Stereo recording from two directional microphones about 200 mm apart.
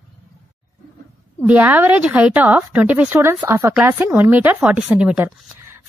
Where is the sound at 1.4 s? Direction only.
10° right (ahead or behind).